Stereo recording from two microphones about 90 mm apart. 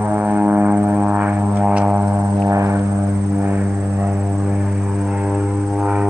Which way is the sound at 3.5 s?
20° right (ahead or behind).